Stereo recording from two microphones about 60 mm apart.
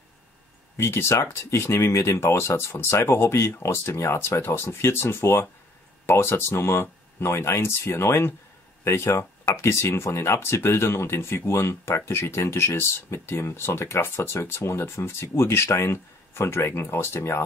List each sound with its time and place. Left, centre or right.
0.7 s speech: left